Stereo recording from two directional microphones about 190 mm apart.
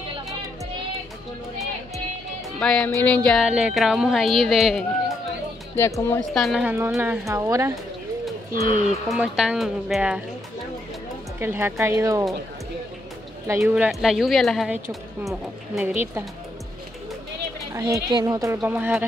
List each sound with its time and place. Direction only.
2.6 s speech: 5° left (ahead or behind)
5.8 s speech: 15° left (ahead or behind)
6.3 s a woman's voice: centre (ahead or behind); by 7.8 s 15° right (ahead or behind)
8.6 s speech: 40° right (ahead or behind)
9.1 s speech: 5° right (ahead or behind)
11.3 s a woman's voice: 10° right (ahead or behind)
13.6 s speech: 5° right (ahead or behind)
17.7 s a woman's voice: 15° right (ahead or behind)